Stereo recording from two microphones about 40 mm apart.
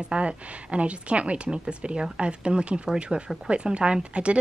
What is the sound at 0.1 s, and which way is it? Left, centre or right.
Speech, right.